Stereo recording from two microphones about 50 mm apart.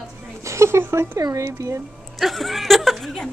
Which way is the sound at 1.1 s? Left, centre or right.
Right.